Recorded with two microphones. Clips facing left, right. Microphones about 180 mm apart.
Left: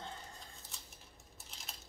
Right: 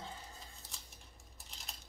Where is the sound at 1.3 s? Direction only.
Centre (ahead or behind).